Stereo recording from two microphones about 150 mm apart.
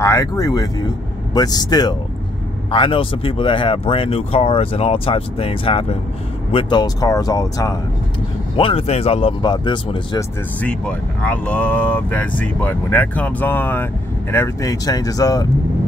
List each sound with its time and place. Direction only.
0.0 s speech: 20° left (ahead or behind)
8.5 s speech: 40° left (ahead or behind)
10.6 s speech: 10° left (ahead or behind)